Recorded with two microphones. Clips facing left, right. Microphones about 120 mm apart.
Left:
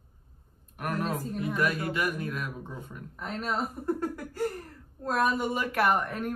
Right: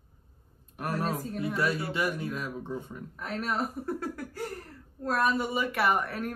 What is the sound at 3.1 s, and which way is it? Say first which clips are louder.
Speech: even; centre (ahead or behind).